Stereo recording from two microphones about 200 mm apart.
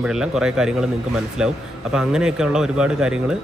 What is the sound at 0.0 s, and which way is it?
A man's voice, 5° right (ahead or behind).